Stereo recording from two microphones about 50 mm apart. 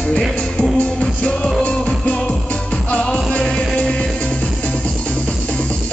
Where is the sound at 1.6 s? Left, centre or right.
Left.